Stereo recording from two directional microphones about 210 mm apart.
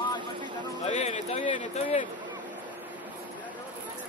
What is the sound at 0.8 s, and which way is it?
Speech, 30° left (ahead or behind).